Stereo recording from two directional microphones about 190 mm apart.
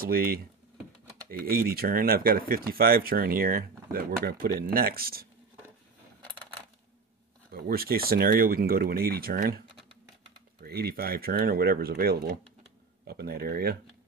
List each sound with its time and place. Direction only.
0.0 s speech: 50° right (ahead or behind)
1.4 s speech: 50° right (ahead or behind)
7.5 s speech: 50° right (ahead or behind)
10.6 s speech: 55° right (ahead or behind)